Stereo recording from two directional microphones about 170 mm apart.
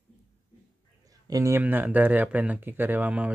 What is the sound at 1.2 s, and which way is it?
Speech, 20° right (ahead or behind).